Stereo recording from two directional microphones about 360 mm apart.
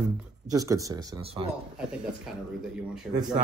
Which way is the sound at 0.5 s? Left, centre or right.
Centre.